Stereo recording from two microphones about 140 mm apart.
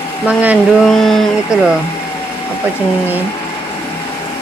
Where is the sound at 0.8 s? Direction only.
Centre (ahead or behind).